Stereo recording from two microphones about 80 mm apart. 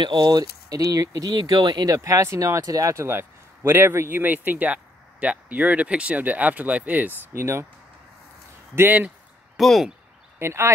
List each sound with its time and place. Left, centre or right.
0.0 s speech: right
1.9 s speech: right
8.7 s speech: right
9.6 s speech: centre
10.4 s speech: right